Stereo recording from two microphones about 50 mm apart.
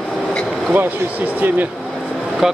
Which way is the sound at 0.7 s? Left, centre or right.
Right.